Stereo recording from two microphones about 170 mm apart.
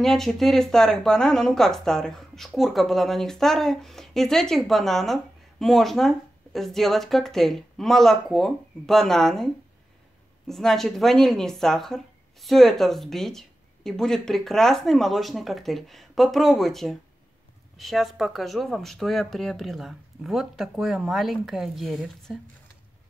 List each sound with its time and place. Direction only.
0.0 s speech: centre (ahead or behind)